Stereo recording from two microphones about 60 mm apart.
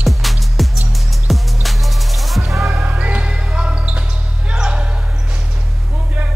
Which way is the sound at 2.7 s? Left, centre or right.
Right.